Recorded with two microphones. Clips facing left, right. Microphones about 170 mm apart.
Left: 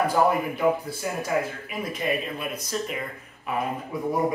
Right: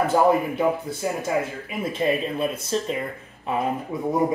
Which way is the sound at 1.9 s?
30° right (ahead or behind).